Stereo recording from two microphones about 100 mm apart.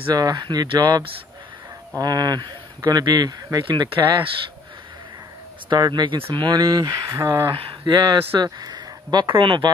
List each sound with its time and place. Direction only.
0.1 s speech: 40° right (ahead or behind)
5.7 s speech: 45° right (ahead or behind)
6.1 s speech: 60° right (ahead or behind); by 7.5 s 30° right (ahead or behind)
7.5 s speech: 50° right (ahead or behind)